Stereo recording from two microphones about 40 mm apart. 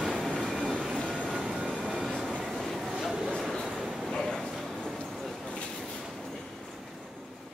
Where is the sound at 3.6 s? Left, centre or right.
Centre.